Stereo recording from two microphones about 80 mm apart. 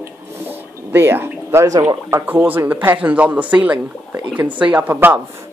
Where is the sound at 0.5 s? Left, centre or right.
Right.